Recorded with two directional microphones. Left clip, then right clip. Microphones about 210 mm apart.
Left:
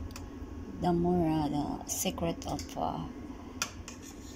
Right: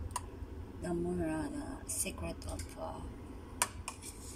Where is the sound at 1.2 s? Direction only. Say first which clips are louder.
Left 7 dB; 20° left (ahead or behind).